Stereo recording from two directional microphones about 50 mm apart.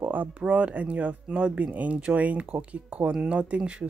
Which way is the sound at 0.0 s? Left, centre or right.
Right.